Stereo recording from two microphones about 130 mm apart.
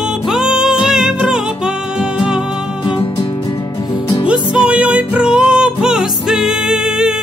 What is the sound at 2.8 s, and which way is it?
Music, 40° left (ahead or behind).